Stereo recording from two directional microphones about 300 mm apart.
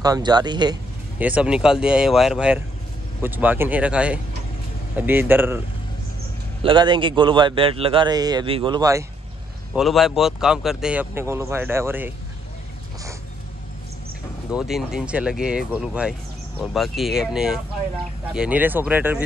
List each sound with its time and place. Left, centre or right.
0.0 s a man's voice: centre
1.2 s a man's voice: centre
6.6 s a man's voice: centre
9.8 s speech: centre
14.5 s speech: centre